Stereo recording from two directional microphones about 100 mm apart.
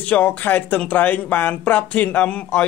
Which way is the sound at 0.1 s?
15° left (ahead or behind).